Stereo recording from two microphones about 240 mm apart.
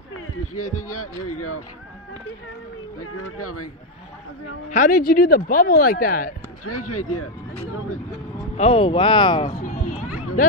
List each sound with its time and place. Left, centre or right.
0.6 s speech: left
3.0 s speech: left
4.6 s speech: left
6.6 s speech: left
8.5 s speech: left